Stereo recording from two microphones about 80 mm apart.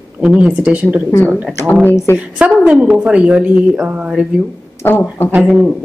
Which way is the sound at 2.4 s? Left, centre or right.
Centre.